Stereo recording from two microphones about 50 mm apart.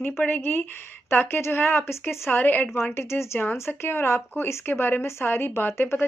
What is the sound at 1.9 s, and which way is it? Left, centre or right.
Speech, left.